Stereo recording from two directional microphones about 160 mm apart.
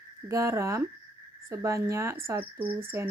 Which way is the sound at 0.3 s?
20° right (ahead or behind).